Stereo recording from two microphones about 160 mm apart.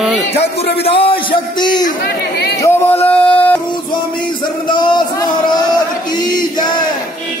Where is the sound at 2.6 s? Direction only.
15° left (ahead or behind).